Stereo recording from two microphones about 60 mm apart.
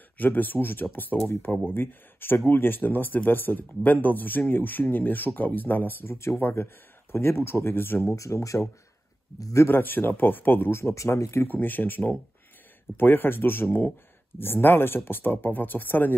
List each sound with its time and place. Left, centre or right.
0.2 s speech: left
1.1 s speech: left
1.7 s speech: left
8.2 s speech: left
9.7 s speech: left
11.4 s speech: left